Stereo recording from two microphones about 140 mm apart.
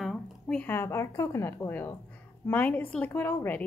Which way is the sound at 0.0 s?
Centre (ahead or behind).